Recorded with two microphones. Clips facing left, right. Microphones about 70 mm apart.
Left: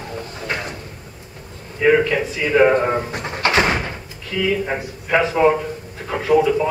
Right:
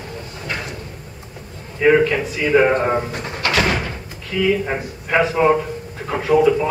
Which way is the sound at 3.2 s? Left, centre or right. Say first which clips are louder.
Left 2 dB; left.